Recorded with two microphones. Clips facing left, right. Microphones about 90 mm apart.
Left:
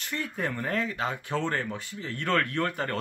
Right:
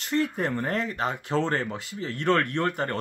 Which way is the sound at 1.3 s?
35° right (ahead or behind).